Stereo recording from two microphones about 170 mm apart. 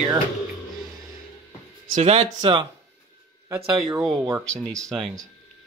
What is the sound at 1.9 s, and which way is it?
Speech, 35° right (ahead or behind).